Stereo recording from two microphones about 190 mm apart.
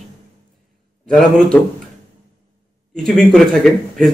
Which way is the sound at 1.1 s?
5° left (ahead or behind).